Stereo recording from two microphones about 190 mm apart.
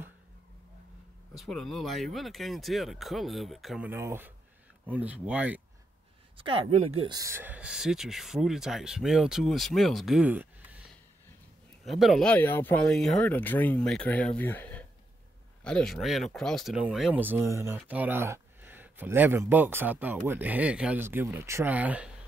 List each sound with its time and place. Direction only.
1.4 s speech: centre (ahead or behind)
3.9 s speech: 10° right (ahead or behind)
6.3 s speech: 30° right (ahead or behind); by 10.5 s 10° right (ahead or behind)
11.8 s speech: centre (ahead or behind)